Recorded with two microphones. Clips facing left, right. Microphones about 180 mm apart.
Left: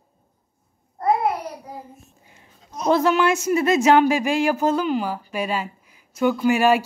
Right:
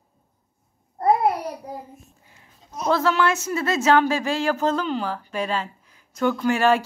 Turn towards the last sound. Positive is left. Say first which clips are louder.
# left 2 dB
turn(degrees=10)  # may be behind; listen again after turning